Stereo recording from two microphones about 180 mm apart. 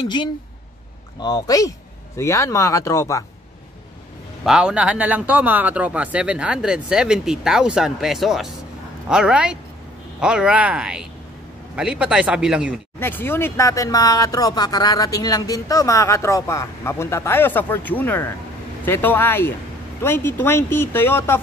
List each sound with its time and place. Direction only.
1.2 s speech: 20° left (ahead or behind)
4.5 s speech: 5° right (ahead or behind)
13.0 s speech: 10° left (ahead or behind)